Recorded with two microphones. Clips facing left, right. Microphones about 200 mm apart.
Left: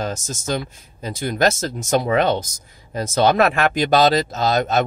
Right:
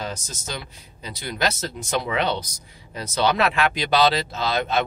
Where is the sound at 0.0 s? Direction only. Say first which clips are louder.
Left 6 dB; 45° left (ahead or behind).